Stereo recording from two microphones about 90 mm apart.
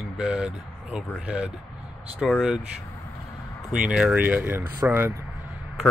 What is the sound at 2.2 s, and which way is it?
Speech, centre (ahead or behind).